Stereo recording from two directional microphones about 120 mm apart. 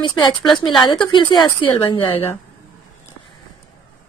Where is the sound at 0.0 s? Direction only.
40° left (ahead or behind).